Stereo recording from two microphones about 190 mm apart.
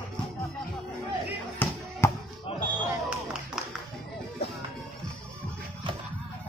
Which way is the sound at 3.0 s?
5° right (ahead or behind).